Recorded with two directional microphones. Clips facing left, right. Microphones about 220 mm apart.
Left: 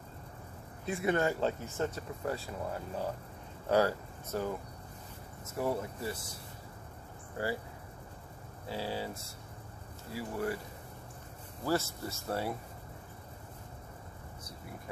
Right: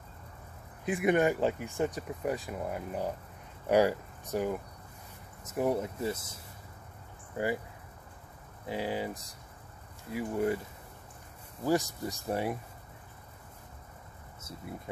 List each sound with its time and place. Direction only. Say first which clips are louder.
0.8 s speech: right 4 dB; 15° right (ahead or behind)
7.4 s speech: right 4 dB; 20° right (ahead or behind)
8.6 s speech: right 4 dB; 15° right (ahead or behind)
11.6 s speech: right 3 dB; 15° right (ahead or behind)